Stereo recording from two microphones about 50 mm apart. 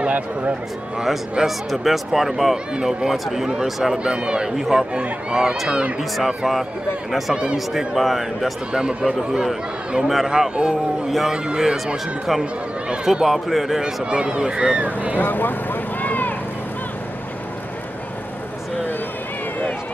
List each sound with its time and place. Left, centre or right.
0.1 s speech: right
0.9 s speech: centre
2.5 s speech: centre
4.0 s speech: centre
4.6 s speech: centre
4.9 s speech: centre
5.9 s speech: centre
8.7 s speech: centre
10.5 s speech: centre
11.1 s speech: centre
11.3 s speech: centre
13.0 s speech: centre
14.9 s speech: right
15.1 s vehicle: left